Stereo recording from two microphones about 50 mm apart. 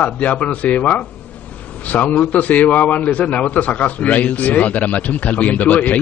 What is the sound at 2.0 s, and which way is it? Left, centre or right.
Speech, left.